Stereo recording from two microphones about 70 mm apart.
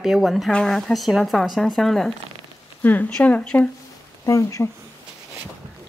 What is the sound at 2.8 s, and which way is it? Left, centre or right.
Speech, left.